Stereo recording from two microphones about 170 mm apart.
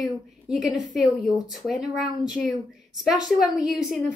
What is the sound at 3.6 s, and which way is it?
Speech, centre (ahead or behind).